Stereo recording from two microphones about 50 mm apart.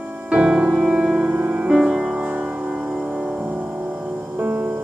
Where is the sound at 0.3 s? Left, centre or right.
Right.